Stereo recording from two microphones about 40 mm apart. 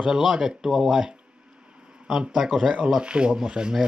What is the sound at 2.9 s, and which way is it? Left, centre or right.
Speech, right.